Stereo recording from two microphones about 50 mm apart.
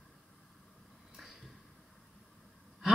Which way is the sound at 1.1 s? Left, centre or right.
Centre.